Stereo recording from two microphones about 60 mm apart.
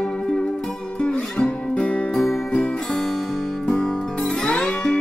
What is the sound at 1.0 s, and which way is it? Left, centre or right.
Music, centre.